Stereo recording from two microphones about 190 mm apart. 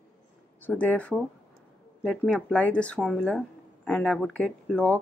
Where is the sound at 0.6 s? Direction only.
10° left (ahead or behind).